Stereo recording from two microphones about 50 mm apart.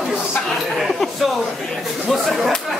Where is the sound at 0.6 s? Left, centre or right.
Centre.